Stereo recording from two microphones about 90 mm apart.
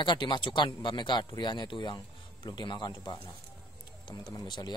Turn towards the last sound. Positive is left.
turn(degrees=55)  # may be behind; listen again after turning